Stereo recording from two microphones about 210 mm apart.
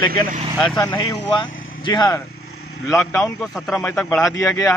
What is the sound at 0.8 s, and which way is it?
Speech, 20° left (ahead or behind).